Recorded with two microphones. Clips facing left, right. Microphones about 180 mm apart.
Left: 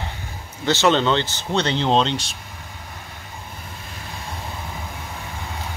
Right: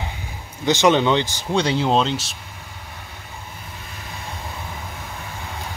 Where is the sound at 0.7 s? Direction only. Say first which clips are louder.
Right 2 dB; 15° right (ahead or behind).